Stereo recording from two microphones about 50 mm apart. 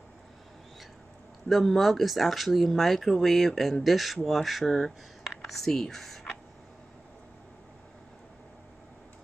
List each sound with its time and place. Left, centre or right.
1.5 s speech: centre